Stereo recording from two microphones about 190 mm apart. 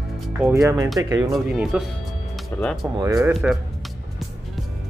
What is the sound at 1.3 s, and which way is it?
A man's voice, 5° right (ahead or behind).